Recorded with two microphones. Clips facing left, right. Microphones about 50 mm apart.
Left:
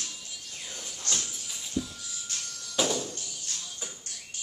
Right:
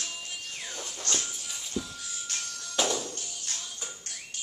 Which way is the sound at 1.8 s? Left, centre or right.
Right.